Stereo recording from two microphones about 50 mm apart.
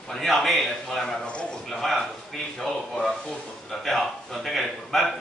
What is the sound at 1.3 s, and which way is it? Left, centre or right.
Speech, left.